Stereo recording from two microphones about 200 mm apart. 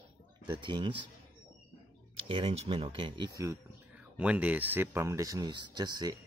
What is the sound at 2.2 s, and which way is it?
Speech, 30° right (ahead or behind).